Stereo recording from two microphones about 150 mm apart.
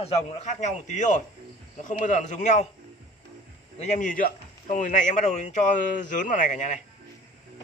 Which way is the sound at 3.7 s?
50° left (ahead or behind).